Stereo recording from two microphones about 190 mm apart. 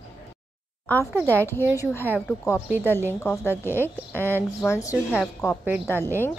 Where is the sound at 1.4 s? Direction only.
10° left (ahead or behind).